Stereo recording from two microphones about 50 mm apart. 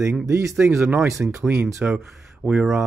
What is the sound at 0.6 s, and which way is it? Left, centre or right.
Speech, right.